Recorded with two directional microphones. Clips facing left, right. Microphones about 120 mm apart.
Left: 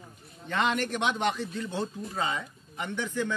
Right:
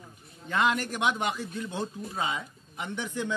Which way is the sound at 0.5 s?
5° right (ahead or behind).